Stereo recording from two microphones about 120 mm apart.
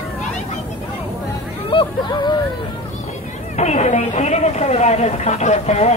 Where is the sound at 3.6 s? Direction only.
70° left (ahead or behind).